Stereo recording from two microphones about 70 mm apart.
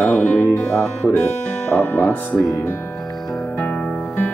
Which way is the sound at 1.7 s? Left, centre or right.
Left.